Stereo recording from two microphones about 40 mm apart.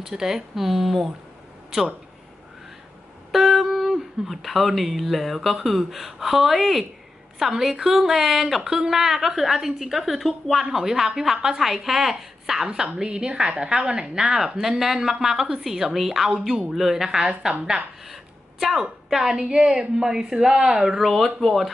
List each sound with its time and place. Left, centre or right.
0.0 s speech: centre
3.3 s speech: centre
13.0 s speech: right
17.2 s a woman's voice: right
18.6 s a woman's voice: centre
21.0 s speech: centre